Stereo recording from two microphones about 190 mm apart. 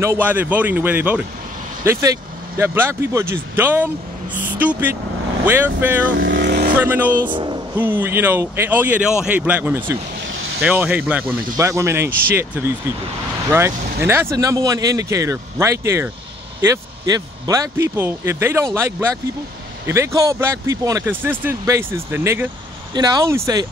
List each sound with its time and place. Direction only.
0.0 s speech: 10° right (ahead or behind)
6.1 s vehicle: 65° right (ahead or behind)
6.8 s speech: 10° right (ahead or behind)
7.2 s speech: 25° right (ahead or behind)
7.7 s speech: 10° right (ahead or behind)